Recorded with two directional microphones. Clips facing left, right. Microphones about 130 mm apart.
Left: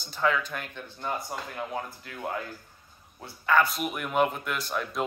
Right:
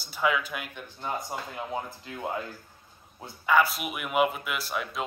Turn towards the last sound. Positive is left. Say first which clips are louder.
# left 2 dB
turn(degrees=0)  # may be behind; listen again after turning